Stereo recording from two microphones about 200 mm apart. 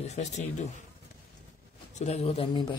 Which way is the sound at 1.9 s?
35° left (ahead or behind).